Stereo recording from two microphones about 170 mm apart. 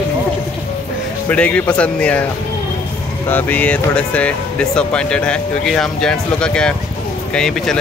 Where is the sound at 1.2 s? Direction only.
10° left (ahead or behind).